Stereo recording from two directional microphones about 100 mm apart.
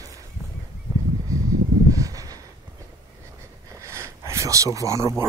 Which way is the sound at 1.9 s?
35° right (ahead or behind).